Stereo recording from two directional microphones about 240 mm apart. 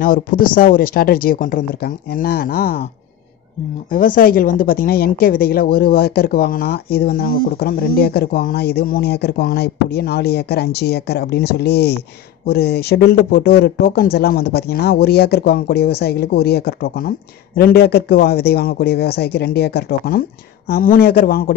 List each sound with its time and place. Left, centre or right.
0.0 s a woman's voice: left
3.9 s a woman's voice: left